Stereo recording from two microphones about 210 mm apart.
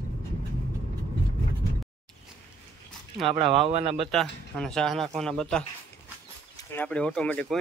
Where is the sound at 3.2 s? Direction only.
Centre (ahead or behind).